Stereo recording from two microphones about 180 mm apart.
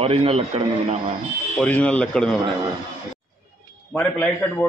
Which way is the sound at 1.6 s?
5° left (ahead or behind).